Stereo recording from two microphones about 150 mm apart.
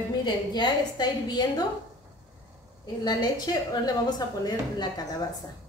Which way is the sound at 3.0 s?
25° left (ahead or behind).